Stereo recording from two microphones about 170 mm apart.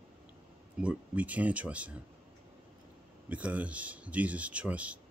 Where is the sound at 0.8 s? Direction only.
10° right (ahead or behind).